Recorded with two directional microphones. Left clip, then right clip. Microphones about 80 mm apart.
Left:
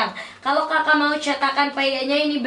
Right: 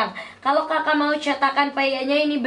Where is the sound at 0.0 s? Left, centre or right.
Right.